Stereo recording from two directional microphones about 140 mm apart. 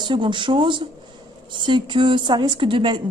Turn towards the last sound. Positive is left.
turn(degrees=-35)  # may be behind; listen again after turning